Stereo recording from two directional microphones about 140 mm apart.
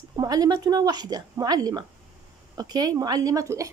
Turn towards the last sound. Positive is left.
turn(degrees=-25)  # may be behind; listen again after turning